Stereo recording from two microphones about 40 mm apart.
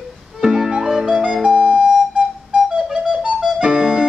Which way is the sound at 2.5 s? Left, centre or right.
Right.